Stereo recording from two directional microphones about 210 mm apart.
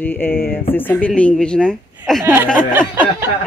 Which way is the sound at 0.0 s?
10° left (ahead or behind).